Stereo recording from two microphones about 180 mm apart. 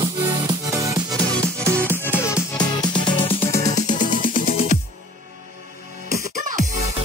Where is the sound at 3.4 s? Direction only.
45° left (ahead or behind).